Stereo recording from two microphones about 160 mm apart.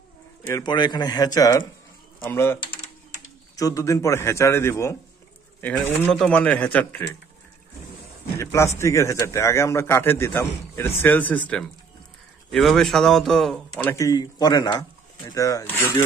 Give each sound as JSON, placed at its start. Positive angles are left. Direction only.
{"t": 0.5, "sound": "a man's voice", "side_deg": 25}
{"t": 6.1, "sound": "a man's voice", "side_deg": 5}
{"t": 8.4, "sound": "a man's voice", "side_deg": 15}
{"t": 13.8, "sound": "speech", "side_deg": 20}